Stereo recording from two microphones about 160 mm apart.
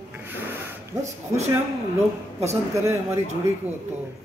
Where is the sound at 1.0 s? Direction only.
20° right (ahead or behind).